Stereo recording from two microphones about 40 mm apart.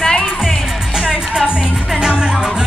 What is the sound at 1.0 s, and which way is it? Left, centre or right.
Music, centre.